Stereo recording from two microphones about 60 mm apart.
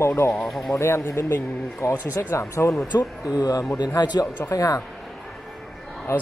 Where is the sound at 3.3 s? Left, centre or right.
Left.